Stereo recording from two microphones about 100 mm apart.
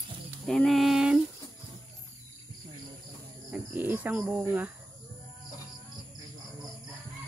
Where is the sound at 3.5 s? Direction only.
15° right (ahead or behind).